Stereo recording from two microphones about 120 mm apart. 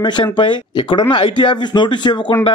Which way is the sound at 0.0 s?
40° left (ahead or behind).